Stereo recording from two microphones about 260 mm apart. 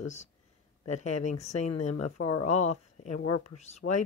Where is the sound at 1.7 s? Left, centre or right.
Left.